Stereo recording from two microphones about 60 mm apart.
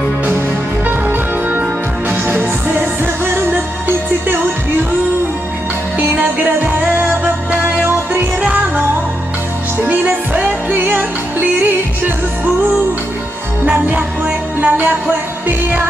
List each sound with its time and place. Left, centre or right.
0.8 s music: right
5.9 s music: right
8.4 s music: centre
9.8 s music: right
13.7 s music: right